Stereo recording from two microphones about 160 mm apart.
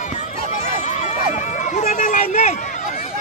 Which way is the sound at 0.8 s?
50° left (ahead or behind).